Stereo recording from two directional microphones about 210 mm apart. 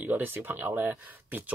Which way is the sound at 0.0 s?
10° right (ahead or behind).